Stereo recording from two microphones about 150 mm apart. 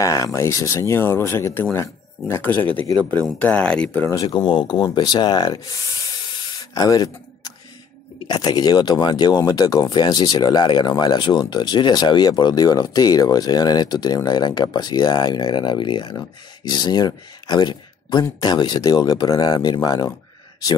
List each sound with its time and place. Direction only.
0.0 s speech: 20° left (ahead or behind)
2.7 s speech: 35° right (ahead or behind)
3.3 s speech: 10° left (ahead or behind); by 5.9 s 25° left (ahead or behind)
6.6 s a sound: 25° left (ahead or behind)
8.3 s speech: 25° left (ahead or behind)